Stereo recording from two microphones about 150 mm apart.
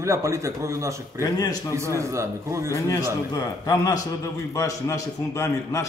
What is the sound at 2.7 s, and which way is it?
A man's voice, 20° left (ahead or behind).